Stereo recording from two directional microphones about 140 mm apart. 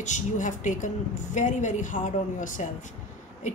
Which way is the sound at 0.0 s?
60° left (ahead or behind).